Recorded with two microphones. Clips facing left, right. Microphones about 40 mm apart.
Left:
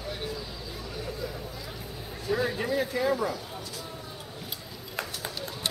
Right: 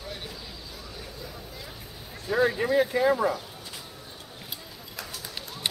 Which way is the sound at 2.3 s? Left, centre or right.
Right.